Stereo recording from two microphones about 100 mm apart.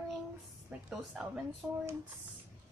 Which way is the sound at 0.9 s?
10° right (ahead or behind).